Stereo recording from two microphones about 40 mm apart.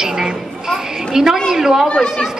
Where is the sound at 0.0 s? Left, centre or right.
Centre.